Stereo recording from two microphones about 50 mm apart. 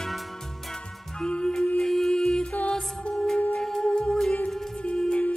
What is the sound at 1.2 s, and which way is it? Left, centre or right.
Music, centre.